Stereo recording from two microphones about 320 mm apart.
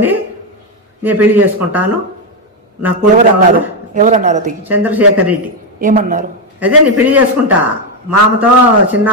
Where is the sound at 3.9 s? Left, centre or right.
Right.